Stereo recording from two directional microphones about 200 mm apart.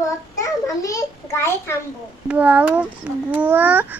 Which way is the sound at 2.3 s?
5° right (ahead or behind).